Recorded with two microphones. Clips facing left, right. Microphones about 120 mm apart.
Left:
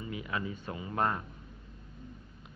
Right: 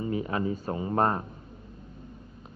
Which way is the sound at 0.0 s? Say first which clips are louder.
Right 8 dB; 35° right (ahead or behind).